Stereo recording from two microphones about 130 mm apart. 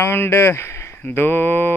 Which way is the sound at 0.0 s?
20° left (ahead or behind).